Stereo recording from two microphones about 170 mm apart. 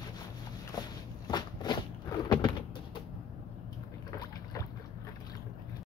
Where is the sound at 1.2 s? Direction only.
25° left (ahead or behind).